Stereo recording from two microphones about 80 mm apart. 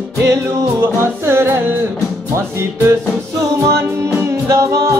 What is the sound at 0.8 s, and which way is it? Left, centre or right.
Music, right.